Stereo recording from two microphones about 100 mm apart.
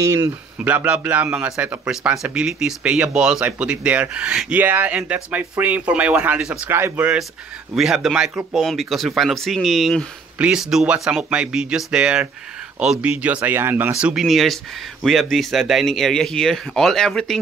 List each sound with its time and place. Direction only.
0.0 s speech: 30° right (ahead or behind)
0.6 s a man's voice: 15° right (ahead or behind)
6.7 s speech: 25° right (ahead or behind)
7.7 s a man's voice: 5° right (ahead or behind)
13.4 s speech: 20° right (ahead or behind)
14.2 s speech: centre (ahead or behind)